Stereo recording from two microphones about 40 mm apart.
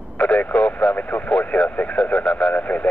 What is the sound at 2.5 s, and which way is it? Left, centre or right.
Speech, left.